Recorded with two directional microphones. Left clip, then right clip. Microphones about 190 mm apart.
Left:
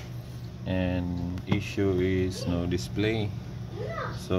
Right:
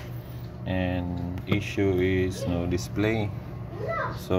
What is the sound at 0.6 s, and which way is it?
Speech, 15° left (ahead or behind).